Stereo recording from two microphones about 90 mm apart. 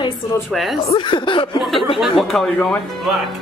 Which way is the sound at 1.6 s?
Centre (ahead or behind).